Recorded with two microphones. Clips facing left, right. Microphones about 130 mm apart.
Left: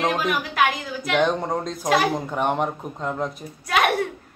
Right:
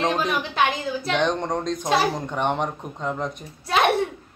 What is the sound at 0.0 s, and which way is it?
Speech, 5° left (ahead or behind).